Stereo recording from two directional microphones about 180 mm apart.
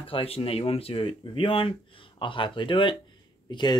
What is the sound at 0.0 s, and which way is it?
Speech, 30° left (ahead or behind).